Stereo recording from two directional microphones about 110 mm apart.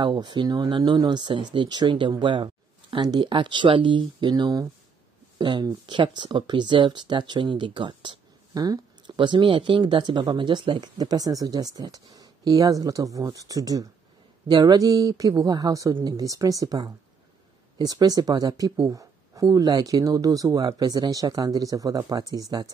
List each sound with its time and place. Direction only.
0.0 s speech: 45° right (ahead or behind)